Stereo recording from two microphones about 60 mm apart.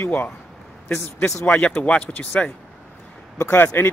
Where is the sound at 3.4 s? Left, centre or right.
Left.